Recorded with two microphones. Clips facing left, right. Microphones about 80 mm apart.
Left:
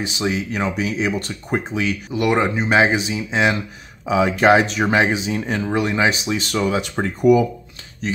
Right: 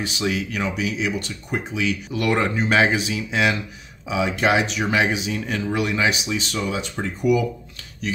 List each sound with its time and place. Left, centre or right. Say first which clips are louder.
0.0 s speech: left 2 dB; left
2.1 s speech: left 4 dB; centre
4.1 s speech: left 6 dB; left
8.0 s speech: left 3 dB; left